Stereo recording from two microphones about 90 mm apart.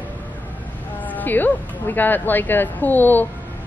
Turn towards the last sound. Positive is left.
turn(degrees=20)  # may be behind; listen again after turning